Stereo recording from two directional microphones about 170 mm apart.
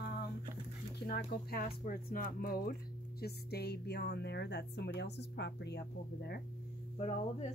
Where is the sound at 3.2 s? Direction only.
70° left (ahead or behind); by 5.8 s 85° left.